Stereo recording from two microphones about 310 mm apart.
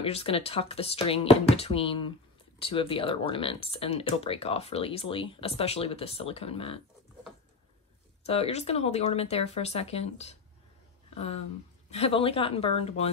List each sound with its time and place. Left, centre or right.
0.0 s speech: centre
8.3 s speech: centre
11.9 s speech: centre